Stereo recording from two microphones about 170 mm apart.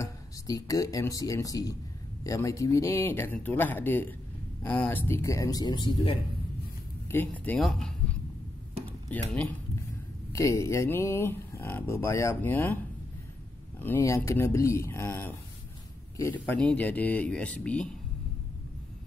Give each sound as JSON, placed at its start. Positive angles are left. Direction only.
{"t": 0.0, "sound": "speech", "side_deg": 20}
{"t": 7.1, "sound": "speech", "side_deg": 10}
{"t": 13.7, "sound": "speech", "side_deg": 10}